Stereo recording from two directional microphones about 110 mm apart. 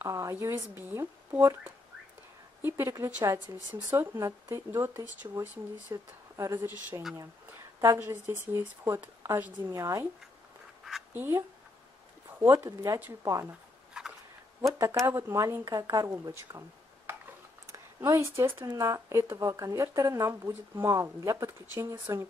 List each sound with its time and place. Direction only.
0.0 s a woman's voice: 25° right (ahead or behind)
3.9 s speech: 20° right (ahead or behind)
8.0 s speech: 20° right (ahead or behind)
9.7 s speech: 30° right (ahead or behind)
11.1 s speech: 20° right (ahead or behind)
14.0 s a sound: 5° right (ahead or behind)
14.9 s speech: 20° right (ahead or behind)